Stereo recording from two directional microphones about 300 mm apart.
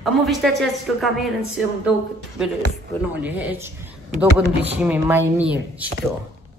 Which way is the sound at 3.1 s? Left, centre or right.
Centre.